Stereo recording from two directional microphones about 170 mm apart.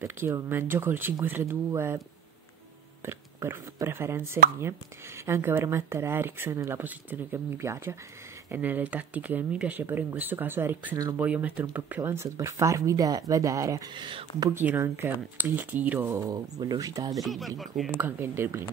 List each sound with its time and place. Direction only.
0.0 s speech: 15° right (ahead or behind)
3.1 s speech: 15° right (ahead or behind)
14.5 s speech: 10° right (ahead or behind)
17.1 s speech: centre (ahead or behind)
18.0 s speech: 15° right (ahead or behind)